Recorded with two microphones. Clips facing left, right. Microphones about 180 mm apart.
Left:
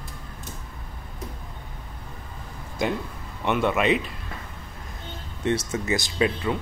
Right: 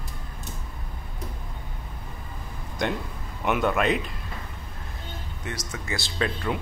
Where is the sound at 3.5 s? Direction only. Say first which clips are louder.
Left 1 dB; centre (ahead or behind).